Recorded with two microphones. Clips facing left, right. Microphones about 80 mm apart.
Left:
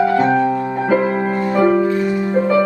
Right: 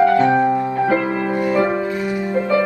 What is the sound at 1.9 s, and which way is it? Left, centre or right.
Music, centre.